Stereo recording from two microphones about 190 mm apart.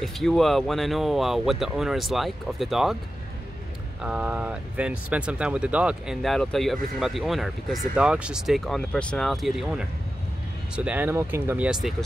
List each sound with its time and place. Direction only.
0.0 s speech: centre (ahead or behind)
4.0 s speech: 5° right (ahead or behind)